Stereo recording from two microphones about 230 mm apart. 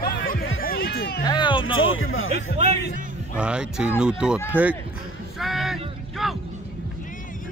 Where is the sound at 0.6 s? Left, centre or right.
Left.